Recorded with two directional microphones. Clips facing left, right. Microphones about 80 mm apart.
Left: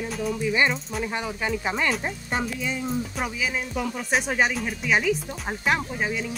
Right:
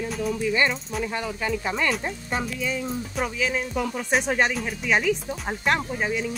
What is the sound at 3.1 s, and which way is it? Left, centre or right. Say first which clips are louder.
Speech: right 2 dB; centre.